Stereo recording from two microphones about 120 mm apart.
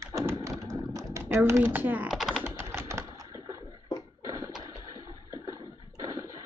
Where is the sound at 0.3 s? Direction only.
25° right (ahead or behind).